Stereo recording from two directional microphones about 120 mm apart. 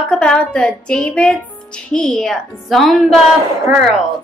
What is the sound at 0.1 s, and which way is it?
Speech, 5° left (ahead or behind).